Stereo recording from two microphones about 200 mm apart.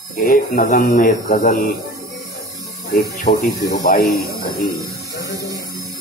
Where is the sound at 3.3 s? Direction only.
35° left (ahead or behind).